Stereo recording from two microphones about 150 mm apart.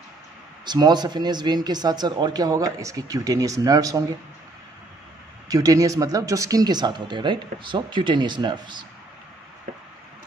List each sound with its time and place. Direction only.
0.7 s speech: 30° right (ahead or behind)
5.5 s speech: 25° right (ahead or behind)